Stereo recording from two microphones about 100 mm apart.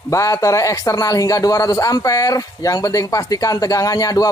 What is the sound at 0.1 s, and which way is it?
Speech, 35° left (ahead or behind).